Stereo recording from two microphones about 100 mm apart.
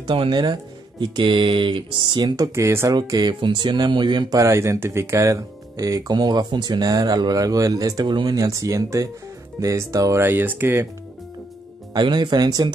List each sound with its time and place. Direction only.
0.3 s speech: 50° right (ahead or behind); by 2.9 s 25° right (ahead or behind)
2.9 s speech: 40° right (ahead or behind)
4.4 s speech: 30° right (ahead or behind)
8.1 s speech: 50° right (ahead or behind)
8.4 s speech: 35° right (ahead or behind)
10.2 s speech: 20° right (ahead or behind)
11.9 s speech: 45° right (ahead or behind)